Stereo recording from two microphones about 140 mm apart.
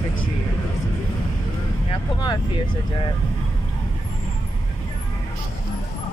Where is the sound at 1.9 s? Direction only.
30° left (ahead or behind).